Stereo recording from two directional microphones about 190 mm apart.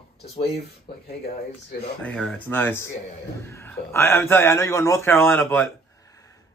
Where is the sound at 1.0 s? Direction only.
55° left (ahead or behind).